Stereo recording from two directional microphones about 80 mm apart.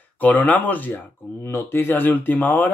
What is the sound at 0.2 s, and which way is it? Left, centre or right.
Speech, left.